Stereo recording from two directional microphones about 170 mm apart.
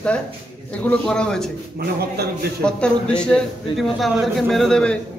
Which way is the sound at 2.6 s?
5° left (ahead or behind).